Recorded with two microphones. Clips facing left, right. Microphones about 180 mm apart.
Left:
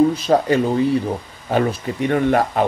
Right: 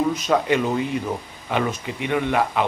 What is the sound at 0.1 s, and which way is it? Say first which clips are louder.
Speech: left 4 dB; 35° left (ahead or behind).